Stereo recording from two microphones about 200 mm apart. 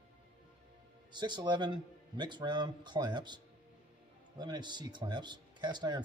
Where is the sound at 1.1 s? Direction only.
20° right (ahead or behind).